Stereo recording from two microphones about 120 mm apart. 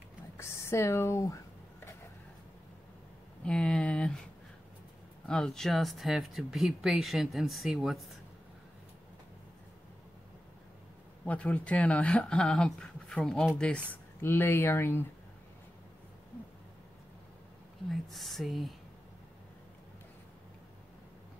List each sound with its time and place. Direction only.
0.4 s speech: 20° left (ahead or behind)
3.4 s speech: 10° left (ahead or behind)
5.3 s speech: 5° left (ahead or behind)
11.2 s speech: 10° left (ahead or behind)
14.2 s speech: 20° left (ahead or behind)
18.1 s speech: centre (ahead or behind)